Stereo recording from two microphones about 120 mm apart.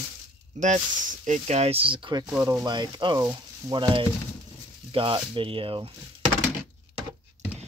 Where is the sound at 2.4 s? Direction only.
30° right (ahead or behind); by 5.9 s 50° right (ahead or behind).